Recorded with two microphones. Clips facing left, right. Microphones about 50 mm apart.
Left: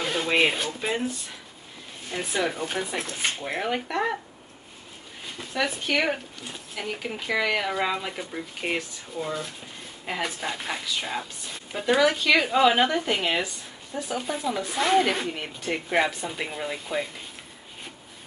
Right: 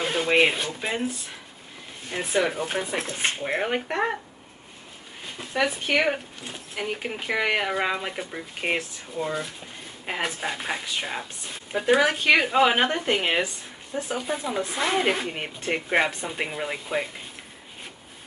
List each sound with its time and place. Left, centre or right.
0.0 s speech: centre
2.0 s speech: centre
5.4 s speech: right
7.0 s speech: right
15.2 s speech: right